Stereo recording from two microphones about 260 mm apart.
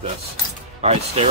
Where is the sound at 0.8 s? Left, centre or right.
Right.